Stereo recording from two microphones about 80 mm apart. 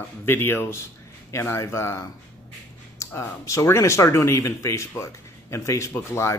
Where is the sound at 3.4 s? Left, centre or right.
Left.